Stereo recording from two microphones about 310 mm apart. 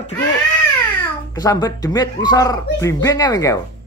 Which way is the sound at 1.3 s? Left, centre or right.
Centre.